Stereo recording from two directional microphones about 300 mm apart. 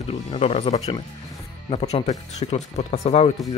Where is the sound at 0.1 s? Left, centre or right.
Centre.